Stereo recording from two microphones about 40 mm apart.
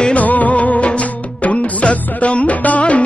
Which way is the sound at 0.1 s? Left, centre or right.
Left.